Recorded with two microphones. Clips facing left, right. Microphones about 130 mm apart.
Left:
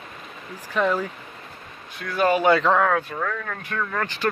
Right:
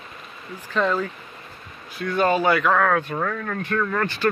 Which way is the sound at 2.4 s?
25° left (ahead or behind).